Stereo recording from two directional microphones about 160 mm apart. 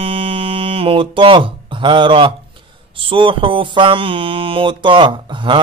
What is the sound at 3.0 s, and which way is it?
Speech, 30° right (ahead or behind).